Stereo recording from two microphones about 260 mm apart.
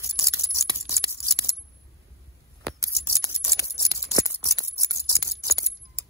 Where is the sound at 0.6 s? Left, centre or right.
Centre.